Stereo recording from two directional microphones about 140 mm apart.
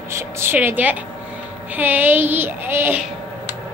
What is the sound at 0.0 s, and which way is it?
A woman's voice, 20° right (ahead or behind).